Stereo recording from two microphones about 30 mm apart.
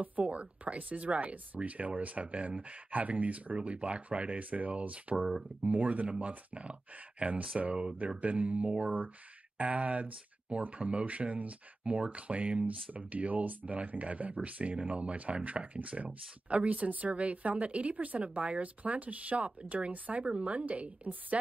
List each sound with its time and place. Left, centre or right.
0.0 s speech: right
1.3 s speech: right
3.5 s speech: right
6.0 s speech: right
7.5 s speech: right
8.2 s speech: right
8.8 s speech: right
9.6 s speech: right
10.8 s speech: right
12.9 s speech: right
20.2 s speech: right